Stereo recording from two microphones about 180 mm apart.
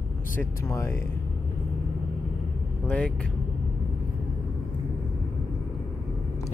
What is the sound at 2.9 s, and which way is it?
Speech, 5° left (ahead or behind).